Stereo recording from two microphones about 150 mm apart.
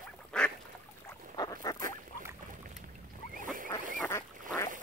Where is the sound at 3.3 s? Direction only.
65° right (ahead or behind).